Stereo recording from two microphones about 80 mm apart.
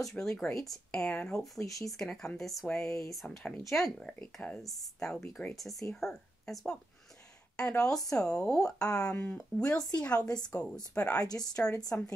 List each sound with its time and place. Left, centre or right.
0.1 s speech: centre
1.6 s speech: left
2.0 s speech: centre
10.5 s speech: left
11.3 s speech: centre
11.9 s speech: left